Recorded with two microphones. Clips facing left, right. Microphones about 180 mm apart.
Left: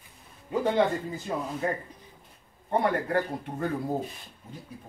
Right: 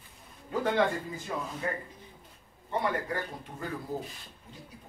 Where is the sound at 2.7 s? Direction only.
60° left (ahead or behind).